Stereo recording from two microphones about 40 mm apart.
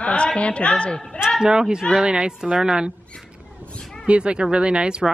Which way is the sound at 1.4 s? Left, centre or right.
Centre.